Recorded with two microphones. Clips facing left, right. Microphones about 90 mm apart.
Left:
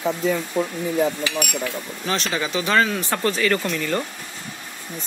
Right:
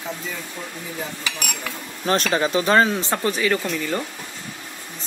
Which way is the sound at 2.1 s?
40° right (ahead or behind).